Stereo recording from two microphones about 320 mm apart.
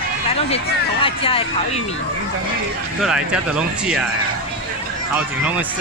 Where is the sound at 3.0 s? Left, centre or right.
Centre.